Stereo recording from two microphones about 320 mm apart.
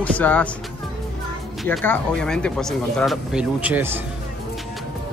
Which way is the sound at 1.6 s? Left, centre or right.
Centre.